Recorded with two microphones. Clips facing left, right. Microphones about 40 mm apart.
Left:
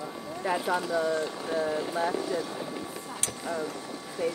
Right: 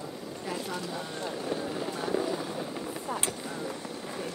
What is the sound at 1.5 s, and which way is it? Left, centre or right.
Speech, centre.